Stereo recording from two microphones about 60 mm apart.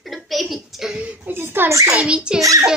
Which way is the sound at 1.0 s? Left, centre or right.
Right.